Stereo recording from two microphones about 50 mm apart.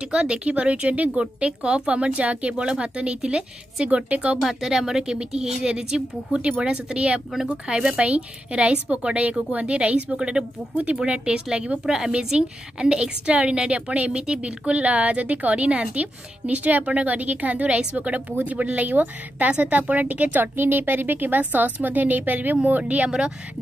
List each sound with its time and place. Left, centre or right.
0.1 s a woman's voice: right
4.5 s a woman's voice: centre; by 23.0 s right
23.0 s a woman's voice: centre